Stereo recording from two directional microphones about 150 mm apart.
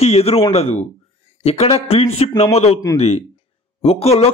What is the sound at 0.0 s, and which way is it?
A man's voice, 40° left (ahead or behind).